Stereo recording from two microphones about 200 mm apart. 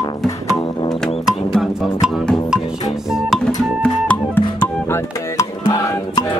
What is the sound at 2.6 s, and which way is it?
Music, 20° left (ahead or behind).